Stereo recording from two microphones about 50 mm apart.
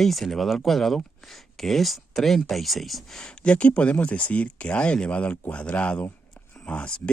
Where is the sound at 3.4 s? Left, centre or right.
Left.